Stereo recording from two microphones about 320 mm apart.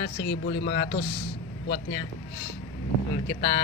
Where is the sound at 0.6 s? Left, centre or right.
Left.